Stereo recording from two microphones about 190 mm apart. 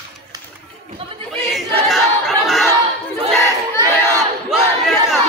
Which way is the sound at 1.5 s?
Centre (ahead or behind).